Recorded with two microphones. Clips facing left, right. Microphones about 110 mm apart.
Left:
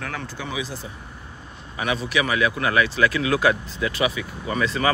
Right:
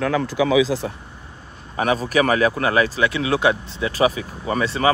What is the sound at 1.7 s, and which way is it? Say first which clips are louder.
Speech: right 5 dB; 40° right (ahead or behind).